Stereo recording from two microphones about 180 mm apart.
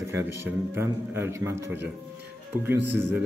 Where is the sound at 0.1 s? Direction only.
15° right (ahead or behind).